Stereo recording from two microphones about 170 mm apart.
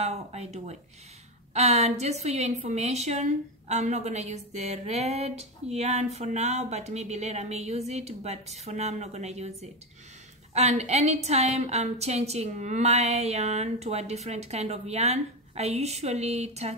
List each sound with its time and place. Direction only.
0.0 s a woman's voice: 40° right (ahead or behind)